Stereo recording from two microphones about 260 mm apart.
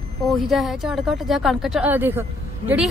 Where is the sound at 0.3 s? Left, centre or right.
Centre.